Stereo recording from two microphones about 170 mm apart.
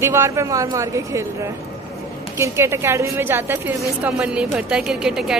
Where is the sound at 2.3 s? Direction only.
15° right (ahead or behind).